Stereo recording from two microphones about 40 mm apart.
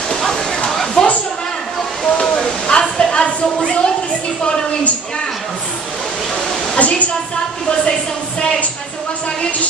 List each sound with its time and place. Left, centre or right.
0.3 s waterfall: centre
1.0 s a sound: centre
6.8 s a woman's voice: left